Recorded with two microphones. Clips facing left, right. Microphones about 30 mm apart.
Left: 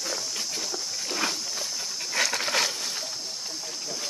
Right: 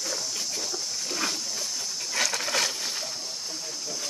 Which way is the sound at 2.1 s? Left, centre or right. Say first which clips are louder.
Left 2 dB; centre.